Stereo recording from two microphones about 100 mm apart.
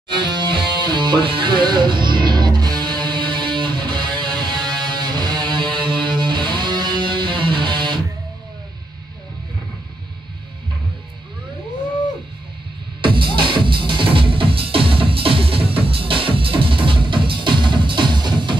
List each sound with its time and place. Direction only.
0.2 s music: 50° right (ahead or behind)
13.0 s music: 55° right (ahead or behind)